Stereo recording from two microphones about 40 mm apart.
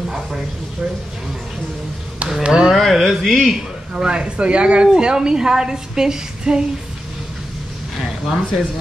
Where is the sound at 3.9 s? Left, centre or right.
Centre.